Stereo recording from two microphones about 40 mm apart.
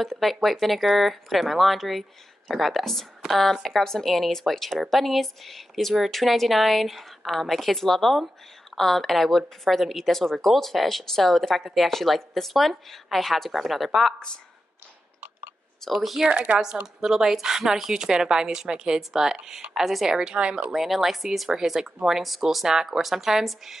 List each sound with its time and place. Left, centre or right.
0.0 s a woman's voice: centre
15.9 s a woman's voice: centre
16.3 s a woman's voice: right; by 20.2 s centre
20.3 s a woman's voice: right
20.7 s a woman's voice: centre